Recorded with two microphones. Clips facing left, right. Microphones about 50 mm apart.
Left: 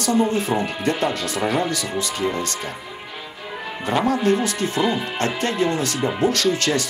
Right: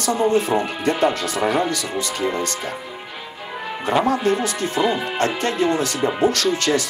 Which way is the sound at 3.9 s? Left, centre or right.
Centre.